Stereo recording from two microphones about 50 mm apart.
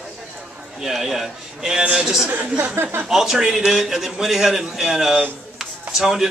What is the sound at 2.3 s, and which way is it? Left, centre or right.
Speech, right.